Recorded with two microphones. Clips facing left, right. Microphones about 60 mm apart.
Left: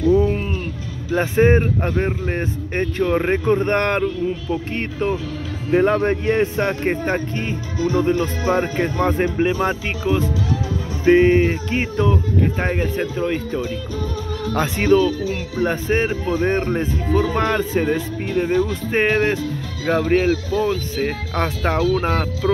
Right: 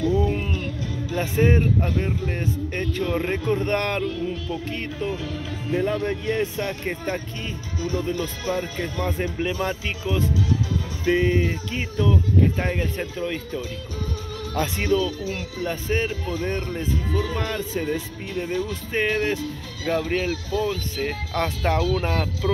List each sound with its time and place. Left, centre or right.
0.3 s music: left
1.1 s speech: left
5.7 s speech: left
11.1 s speech: left
12.5 s speech: left
13.0 s speech: left
14.5 s speech: left
14.9 s speech: left
15.2 s speech: left
15.7 s speech: left
16.3 s speech: left
21.0 s speech: left